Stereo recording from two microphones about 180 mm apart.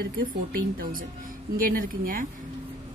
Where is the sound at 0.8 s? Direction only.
50° right (ahead or behind).